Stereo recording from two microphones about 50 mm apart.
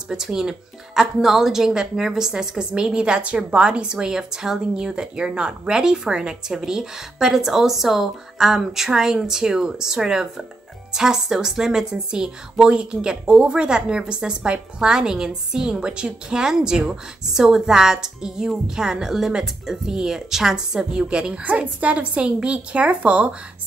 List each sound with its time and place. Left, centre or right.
0.1 s a woman's voice: centre